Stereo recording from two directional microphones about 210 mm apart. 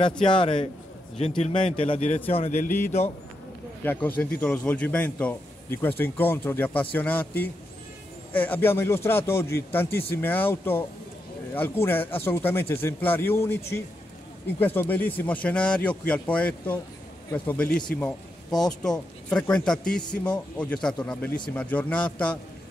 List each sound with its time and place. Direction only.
0.2 s a man's voice: 25° left (ahead or behind)
3.8 s a man's voice: 10° left (ahead or behind)
14.6 s a man's voice: 10° left (ahead or behind)